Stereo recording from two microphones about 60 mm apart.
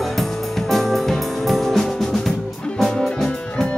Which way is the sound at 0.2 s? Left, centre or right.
Centre.